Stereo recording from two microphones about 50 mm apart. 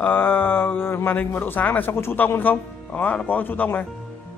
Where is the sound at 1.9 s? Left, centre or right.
Left.